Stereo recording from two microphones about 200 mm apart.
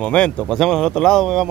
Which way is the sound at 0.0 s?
5° left (ahead or behind).